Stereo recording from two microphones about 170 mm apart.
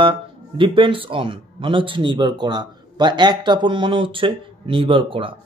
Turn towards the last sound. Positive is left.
turn(degrees=-30)  # may be behind; listen again after turning